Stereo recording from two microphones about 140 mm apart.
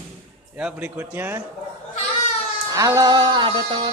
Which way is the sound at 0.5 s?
10° right (ahead or behind).